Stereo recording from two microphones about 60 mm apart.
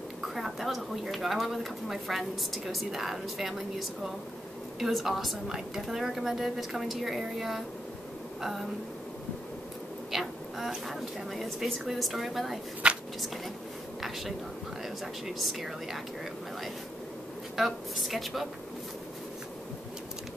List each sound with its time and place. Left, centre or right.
0.3 s speech: centre
10.1 s a woman's voice: centre
12.8 s a sound: centre
14.0 s speech: centre
17.6 s speech: centre